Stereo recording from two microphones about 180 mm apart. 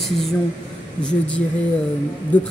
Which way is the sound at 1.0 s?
5° left (ahead or behind).